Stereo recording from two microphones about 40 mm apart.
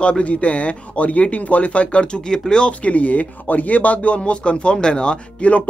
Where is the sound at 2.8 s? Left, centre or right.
Left.